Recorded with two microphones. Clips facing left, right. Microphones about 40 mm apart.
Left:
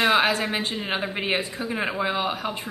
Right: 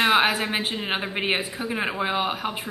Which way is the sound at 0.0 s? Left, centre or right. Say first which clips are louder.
Even; centre.